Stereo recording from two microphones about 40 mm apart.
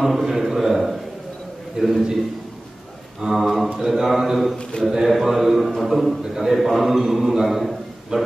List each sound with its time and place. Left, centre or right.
0.0 s a man's voice: centre
3.2 s a sound: centre
4.9 s a man's voice: centre